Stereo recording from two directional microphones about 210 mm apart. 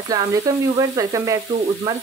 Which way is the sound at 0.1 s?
15° right (ahead or behind).